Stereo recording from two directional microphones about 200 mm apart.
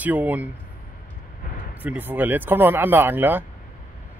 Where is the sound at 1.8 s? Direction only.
10° right (ahead or behind).